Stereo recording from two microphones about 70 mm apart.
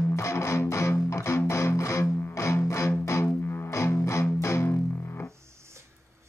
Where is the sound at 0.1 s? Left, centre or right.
Left.